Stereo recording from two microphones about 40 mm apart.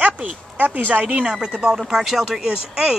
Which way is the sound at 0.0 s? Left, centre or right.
Right.